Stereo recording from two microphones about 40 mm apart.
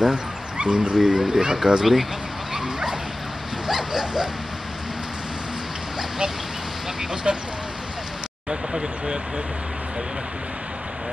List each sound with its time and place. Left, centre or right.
0.0 s dog: right
0.9 s speech: centre
2.5 s dog: centre
3.6 s a sound: centre
5.9 s duck: centre
7.3 s speech: right
8.5 s speech: right